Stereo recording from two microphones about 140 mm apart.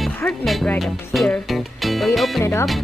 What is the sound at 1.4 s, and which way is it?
Music, centre (ahead or behind).